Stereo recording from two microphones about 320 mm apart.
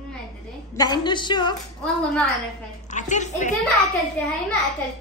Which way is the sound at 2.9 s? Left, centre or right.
Left.